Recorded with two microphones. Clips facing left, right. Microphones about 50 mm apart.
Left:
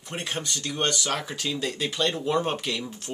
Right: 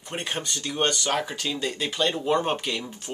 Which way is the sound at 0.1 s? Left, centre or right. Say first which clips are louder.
Right 1 dB; centre.